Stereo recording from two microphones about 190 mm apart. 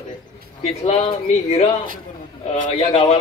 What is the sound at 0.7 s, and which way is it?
Speech, 35° left (ahead or behind).